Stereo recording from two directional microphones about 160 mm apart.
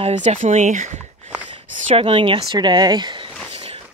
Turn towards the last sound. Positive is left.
turn(degrees=-30)  # may be behind; listen again after turning